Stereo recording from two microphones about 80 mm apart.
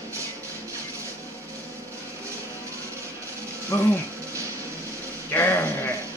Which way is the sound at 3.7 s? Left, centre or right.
Left.